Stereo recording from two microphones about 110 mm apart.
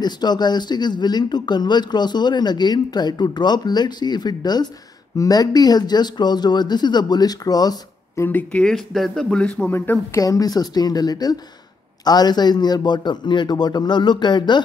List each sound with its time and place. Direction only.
0.0 s speech: 40° left (ahead or behind)
8.2 s speech: 15° left (ahead or behind)
9.8 s a woman's voice: 20° left (ahead or behind)
10.2 s speech: 35° left (ahead or behind)